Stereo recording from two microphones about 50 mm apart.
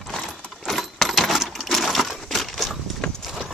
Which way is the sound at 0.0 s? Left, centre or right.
Centre.